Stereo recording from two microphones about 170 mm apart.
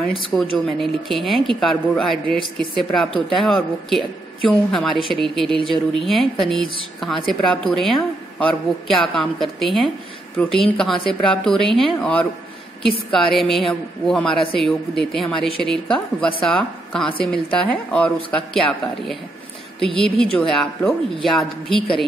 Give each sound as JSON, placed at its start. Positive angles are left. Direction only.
{"t": 0.1, "sound": "a woman's voice", "side_deg": 0}
{"t": 20.3, "sound": "speech", "side_deg": 5}